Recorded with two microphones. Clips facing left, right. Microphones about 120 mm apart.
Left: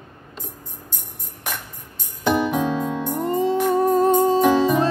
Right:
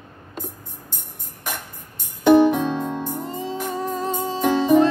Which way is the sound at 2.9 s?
65° left (ahead or behind).